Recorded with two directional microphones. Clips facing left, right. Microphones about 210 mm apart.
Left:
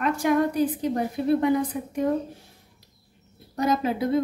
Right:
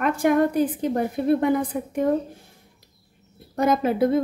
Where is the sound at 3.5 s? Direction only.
55° right (ahead or behind).